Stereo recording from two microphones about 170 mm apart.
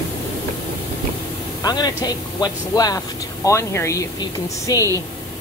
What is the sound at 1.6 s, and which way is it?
Speech, 25° left (ahead or behind).